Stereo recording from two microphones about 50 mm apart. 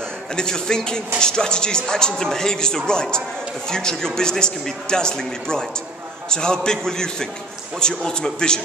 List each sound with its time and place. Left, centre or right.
0.4 s speech: centre